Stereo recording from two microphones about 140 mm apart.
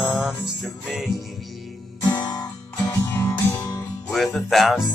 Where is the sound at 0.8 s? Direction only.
Centre (ahead or behind).